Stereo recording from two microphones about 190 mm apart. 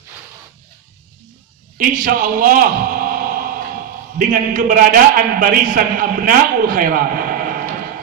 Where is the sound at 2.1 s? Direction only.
45° right (ahead or behind).